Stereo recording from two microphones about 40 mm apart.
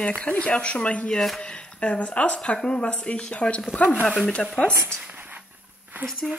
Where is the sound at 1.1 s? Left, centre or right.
Centre.